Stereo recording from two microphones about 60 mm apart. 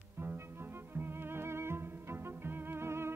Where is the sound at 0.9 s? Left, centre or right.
Right.